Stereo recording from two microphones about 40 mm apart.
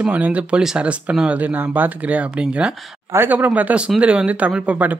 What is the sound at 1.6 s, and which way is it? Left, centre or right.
Speech, right.